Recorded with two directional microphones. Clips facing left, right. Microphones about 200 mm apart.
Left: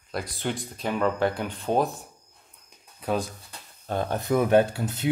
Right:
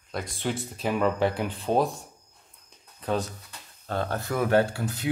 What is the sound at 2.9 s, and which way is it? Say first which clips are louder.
Speech: left 1 dB; 10° left (ahead or behind).